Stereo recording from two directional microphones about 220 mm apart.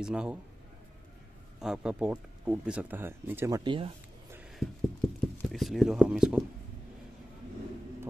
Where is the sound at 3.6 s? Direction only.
25° right (ahead or behind).